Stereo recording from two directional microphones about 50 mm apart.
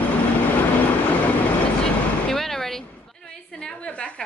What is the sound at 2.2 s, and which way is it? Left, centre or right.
Vehicle, centre.